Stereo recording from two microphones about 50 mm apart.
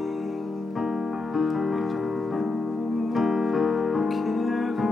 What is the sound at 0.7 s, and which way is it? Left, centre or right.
Music, centre.